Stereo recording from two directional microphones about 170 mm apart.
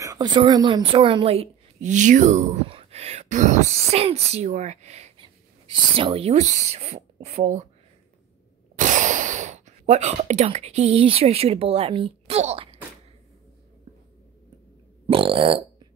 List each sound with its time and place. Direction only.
0.0 s a woman's voice: 20° right (ahead or behind); by 7.6 s 40° right (ahead or behind)
8.7 s speech: 45° right (ahead or behind)
15.0 s burping: 30° right (ahead or behind)